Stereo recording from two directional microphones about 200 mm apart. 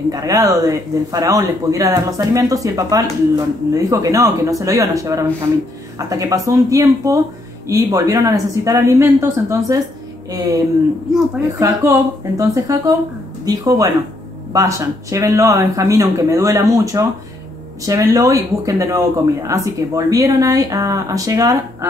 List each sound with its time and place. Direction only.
0.1 s speech: 15° right (ahead or behind)
11.4 s speech: 15° right (ahead or behind)